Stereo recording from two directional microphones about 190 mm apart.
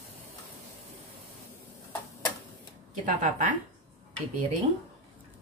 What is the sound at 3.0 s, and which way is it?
Speech, 40° right (ahead or behind).